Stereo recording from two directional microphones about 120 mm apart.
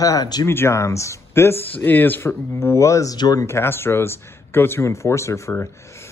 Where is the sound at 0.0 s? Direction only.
30° left (ahead or behind).